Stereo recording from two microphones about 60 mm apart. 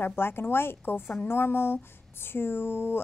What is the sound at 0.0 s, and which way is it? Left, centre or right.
A woman's voice, left.